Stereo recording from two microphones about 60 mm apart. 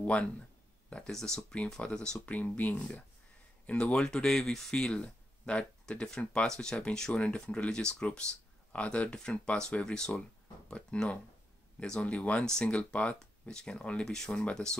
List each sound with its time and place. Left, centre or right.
0.0 s speech: left
0.8 s a sound: centre
1.1 s speech: centre
2.2 s speech: left